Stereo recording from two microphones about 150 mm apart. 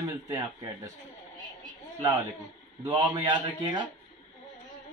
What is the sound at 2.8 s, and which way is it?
A man's voice, 30° right (ahead or behind).